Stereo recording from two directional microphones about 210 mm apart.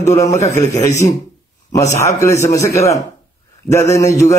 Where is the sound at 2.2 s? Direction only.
15° left (ahead or behind).